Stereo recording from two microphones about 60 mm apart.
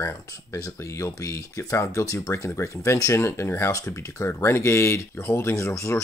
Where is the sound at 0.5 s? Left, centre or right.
Left.